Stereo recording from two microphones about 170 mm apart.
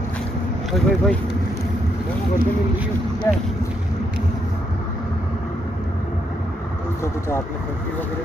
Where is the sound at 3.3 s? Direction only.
15° left (ahead or behind).